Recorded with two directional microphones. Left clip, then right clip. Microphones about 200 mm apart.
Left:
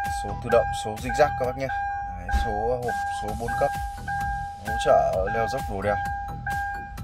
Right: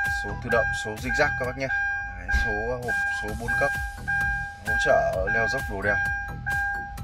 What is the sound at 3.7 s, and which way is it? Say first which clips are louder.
Music: right 2 dB; centre (ahead or behind).